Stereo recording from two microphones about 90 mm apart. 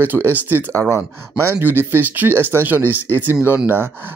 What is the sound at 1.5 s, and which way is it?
Speech, 20° right (ahead or behind).